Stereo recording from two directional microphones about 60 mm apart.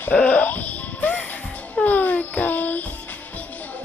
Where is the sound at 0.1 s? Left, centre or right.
Left.